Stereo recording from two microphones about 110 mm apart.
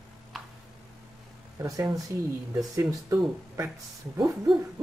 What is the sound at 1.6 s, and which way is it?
Speech, 35° right (ahead or behind).